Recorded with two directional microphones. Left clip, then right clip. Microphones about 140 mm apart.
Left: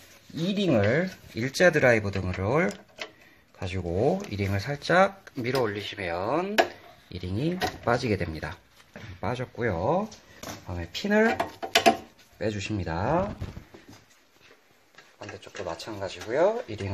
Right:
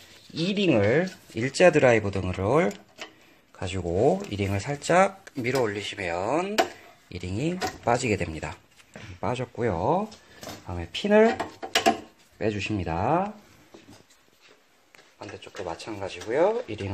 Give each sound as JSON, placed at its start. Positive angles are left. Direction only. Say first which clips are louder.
{"t": 0.5, "sound": "speech", "louder": "right 2 dB", "side_deg": -25}
{"t": 9.2, "sound": "speech", "louder": "right 2 dB", "side_deg": -25}
{"t": 11.6, "sound": "a sound", "louder": "left 2 dB", "side_deg": 25}
{"t": 12.4, "sound": "speech", "louder": "right 3 dB", "side_deg": -35}
{"t": 15.4, "sound": "speech", "louder": "even", "side_deg": -15}